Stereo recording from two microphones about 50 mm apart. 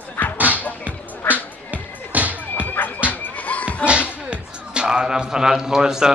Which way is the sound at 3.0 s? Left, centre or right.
Left.